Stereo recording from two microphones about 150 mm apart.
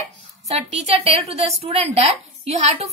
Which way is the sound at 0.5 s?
45° right (ahead or behind).